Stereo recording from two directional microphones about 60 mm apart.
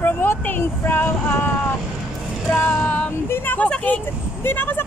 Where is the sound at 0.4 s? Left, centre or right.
Left.